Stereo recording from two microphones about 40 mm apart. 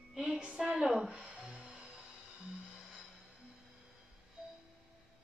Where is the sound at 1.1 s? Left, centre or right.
Right.